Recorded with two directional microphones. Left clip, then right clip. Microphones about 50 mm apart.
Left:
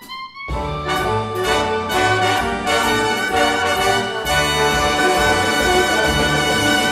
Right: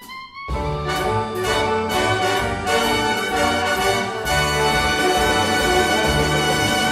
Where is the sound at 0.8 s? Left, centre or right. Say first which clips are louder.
Left 2 dB; left.